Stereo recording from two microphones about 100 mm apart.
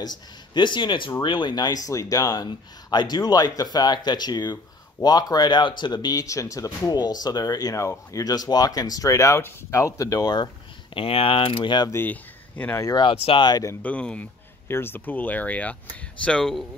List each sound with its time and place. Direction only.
0.6 s speech: 50° left (ahead or behind)
11.0 s mechanisms: 70° left (ahead or behind); by 11.9 s 50° left (ahead or behind)
11.9 s speech: 20° left (ahead or behind)
13.0 s speech: 70° left (ahead or behind)
13.4 s speech: 45° left (ahead or behind)
13.8 s speech: 15° left (ahead or behind)